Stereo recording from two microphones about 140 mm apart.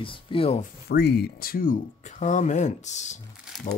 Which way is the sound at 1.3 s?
90° left.